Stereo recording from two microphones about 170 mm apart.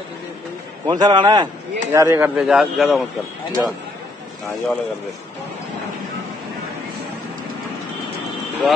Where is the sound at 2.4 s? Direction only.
5° right (ahead or behind).